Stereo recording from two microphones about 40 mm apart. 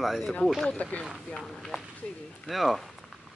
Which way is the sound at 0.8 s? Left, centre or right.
Left.